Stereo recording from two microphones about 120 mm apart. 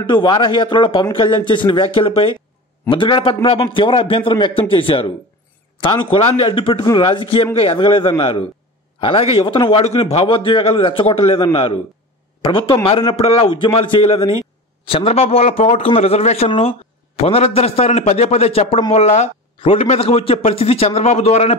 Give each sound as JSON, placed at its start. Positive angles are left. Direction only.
{"t": 0.0, "sound": "a man's voice", "side_deg": 40}
{"t": 19.6, "sound": "a man's voice", "side_deg": 50}